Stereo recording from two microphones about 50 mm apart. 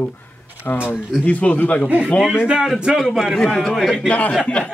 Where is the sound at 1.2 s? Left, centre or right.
Left.